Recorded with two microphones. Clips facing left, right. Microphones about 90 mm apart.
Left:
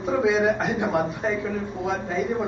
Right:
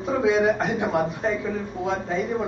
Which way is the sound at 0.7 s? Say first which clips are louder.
Even; 20° left (ahead or behind).